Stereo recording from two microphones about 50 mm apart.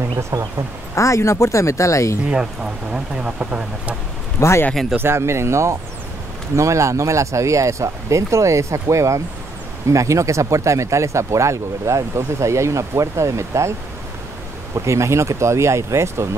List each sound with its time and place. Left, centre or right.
0.3 s speech: right
0.9 s speech: left
3.2 s speech: right
4.4 s speech: left
4.9 s speech: right
6.5 s speech: right
14.9 s speech: right